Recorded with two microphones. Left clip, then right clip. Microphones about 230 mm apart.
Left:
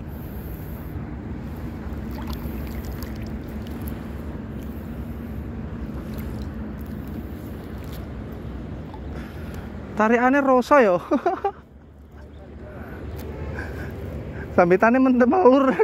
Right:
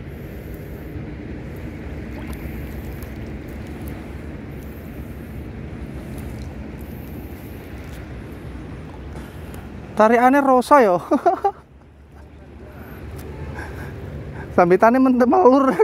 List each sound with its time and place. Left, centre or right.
9.9 s speech: right
14.5 s speech: right